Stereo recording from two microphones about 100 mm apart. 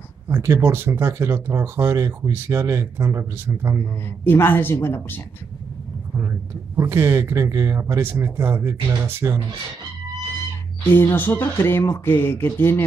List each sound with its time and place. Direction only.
0.3 s speech: 25° right (ahead or behind)
4.2 s speech: 25° left (ahead or behind)
6.8 s speech: 25° right (ahead or behind)
10.9 s speech: 20° left (ahead or behind)